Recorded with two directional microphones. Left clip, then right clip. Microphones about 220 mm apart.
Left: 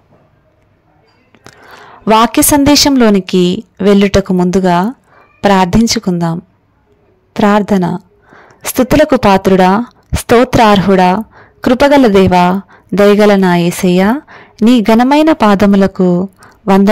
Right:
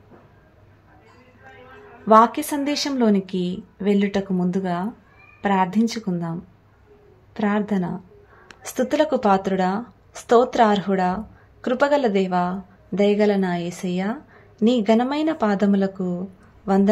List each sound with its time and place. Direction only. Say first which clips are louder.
2.1 s a woman's voice: left 7 dB; 45° left (ahead or behind)